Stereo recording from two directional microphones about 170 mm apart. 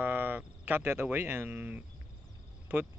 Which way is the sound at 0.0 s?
10° right (ahead or behind).